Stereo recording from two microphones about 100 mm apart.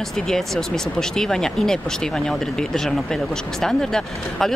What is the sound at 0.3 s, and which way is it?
Speech, 5° left (ahead or behind).